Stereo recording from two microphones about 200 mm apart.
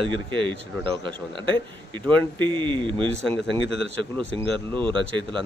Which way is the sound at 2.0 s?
10° left (ahead or behind).